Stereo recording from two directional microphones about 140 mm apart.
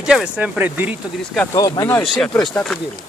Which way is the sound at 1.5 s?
25° left (ahead or behind).